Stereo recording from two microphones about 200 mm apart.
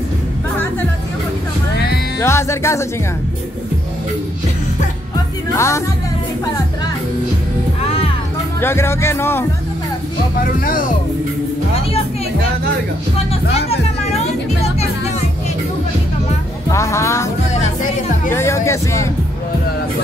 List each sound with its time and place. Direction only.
2.1 s music: 15° left (ahead or behind)
5.6 s speech: 15° left (ahead or behind)
7.8 s music: 30° left (ahead or behind)
8.5 s speech: 10° left (ahead or behind)
13.3 s music: 30° left (ahead or behind)
16.7 s speech: 15° left (ahead or behind)
18.3 s speech: 15° left (ahead or behind)